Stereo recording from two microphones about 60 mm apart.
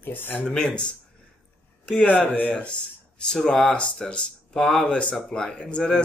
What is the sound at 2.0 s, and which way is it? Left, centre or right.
Speech, left.